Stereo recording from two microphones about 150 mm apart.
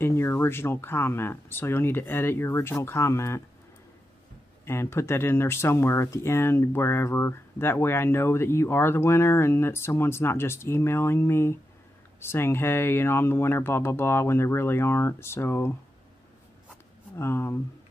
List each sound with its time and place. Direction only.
0.0 s speech: 15° left (ahead or behind)
4.6 s speech: 15° left (ahead or behind)
17.2 s speech: 15° left (ahead or behind)